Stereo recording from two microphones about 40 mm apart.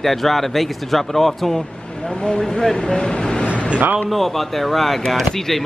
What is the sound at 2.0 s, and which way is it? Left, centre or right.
Speech, centre.